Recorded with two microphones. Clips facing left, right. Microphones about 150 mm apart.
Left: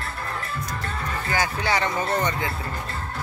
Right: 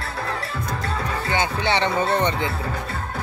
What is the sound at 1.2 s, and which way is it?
Speech, 25° right (ahead or behind).